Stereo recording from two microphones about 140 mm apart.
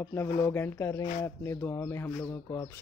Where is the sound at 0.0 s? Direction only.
20° left (ahead or behind).